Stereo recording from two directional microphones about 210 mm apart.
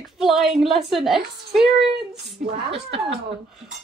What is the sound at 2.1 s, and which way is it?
Speech, 50° right (ahead or behind).